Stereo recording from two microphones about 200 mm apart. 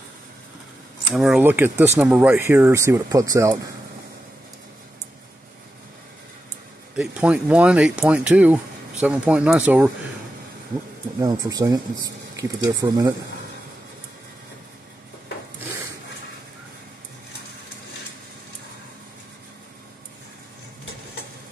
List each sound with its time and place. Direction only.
1.1 s speech: 5° right (ahead or behind)
7.0 s speech: 5° right (ahead or behind)
11.1 s speech: 15° right (ahead or behind)